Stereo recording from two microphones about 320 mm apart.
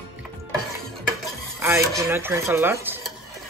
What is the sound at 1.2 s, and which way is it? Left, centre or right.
Speech, centre.